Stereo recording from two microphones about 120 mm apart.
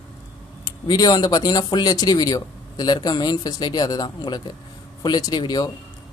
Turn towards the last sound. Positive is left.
turn(degrees=35)  # may be behind; listen again after turning